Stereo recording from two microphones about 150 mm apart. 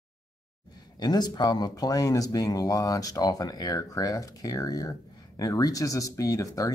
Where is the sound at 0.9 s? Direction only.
25° left (ahead or behind).